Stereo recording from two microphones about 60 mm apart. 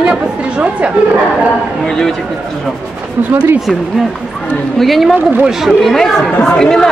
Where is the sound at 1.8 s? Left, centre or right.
Centre.